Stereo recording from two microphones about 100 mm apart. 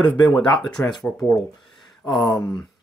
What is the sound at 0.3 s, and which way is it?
Speech, 5° left (ahead or behind).